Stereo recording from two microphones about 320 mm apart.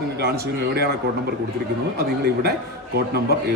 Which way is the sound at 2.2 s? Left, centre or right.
Right.